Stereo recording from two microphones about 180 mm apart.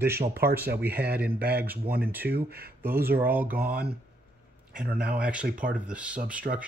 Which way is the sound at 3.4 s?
50° right (ahead or behind).